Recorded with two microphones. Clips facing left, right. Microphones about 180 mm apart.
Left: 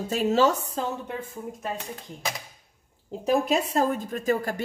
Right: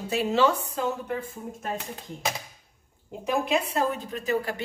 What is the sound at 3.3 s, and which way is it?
A woman's voice, 40° left (ahead or behind).